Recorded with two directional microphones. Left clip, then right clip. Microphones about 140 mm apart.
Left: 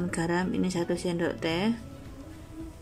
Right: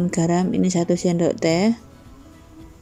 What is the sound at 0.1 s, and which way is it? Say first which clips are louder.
Speech: right 6 dB; 25° right (ahead or behind).